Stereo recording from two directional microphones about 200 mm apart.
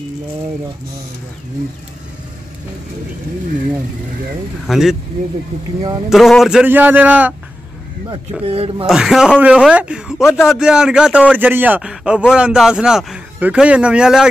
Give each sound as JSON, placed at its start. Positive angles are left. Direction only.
{"t": 4.6, "sound": "a man's voice", "side_deg": 0}
{"t": 6.0, "sound": "speech", "side_deg": 0}
{"t": 8.1, "sound": "speech", "side_deg": -30}
{"t": 8.8, "sound": "a man's voice", "side_deg": -5}